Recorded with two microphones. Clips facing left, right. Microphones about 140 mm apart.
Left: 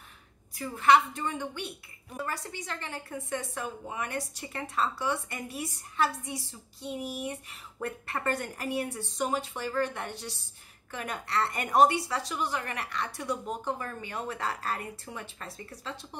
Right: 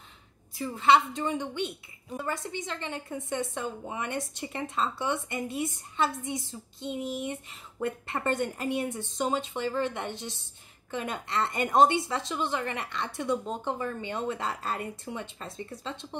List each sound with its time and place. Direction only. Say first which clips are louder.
0.6 s a woman's voice: even; 25° right (ahead or behind)